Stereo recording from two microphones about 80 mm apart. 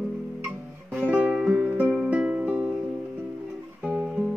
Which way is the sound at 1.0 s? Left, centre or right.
Centre.